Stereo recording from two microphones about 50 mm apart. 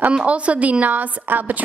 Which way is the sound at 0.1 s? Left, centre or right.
Right.